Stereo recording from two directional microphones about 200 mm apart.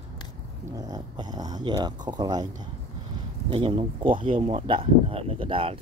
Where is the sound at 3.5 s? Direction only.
25° right (ahead or behind).